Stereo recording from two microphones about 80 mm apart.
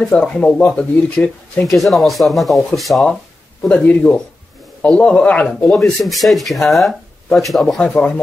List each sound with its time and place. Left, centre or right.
0.2 s speech: centre
1.8 s speech: centre
3.6 s speech: centre
5.7 s speech: centre
7.8 s speech: centre